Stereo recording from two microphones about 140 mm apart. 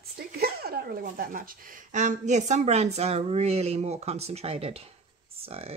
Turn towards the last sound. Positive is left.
turn(degrees=-45)  # may be behind; listen again after turning